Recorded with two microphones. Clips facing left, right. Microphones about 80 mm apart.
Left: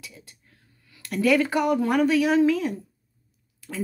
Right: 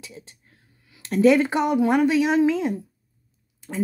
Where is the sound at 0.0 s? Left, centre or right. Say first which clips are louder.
Right 4 dB; right.